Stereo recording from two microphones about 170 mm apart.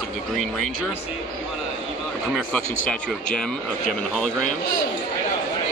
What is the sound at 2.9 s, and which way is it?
Speech, 5° left (ahead or behind).